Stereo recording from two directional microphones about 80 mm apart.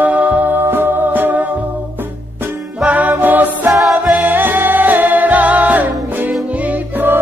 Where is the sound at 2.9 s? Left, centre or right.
Centre.